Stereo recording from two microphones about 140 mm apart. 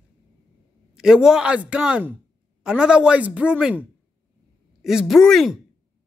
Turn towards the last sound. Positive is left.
turn(degrees=0)  # may be behind; listen again after turning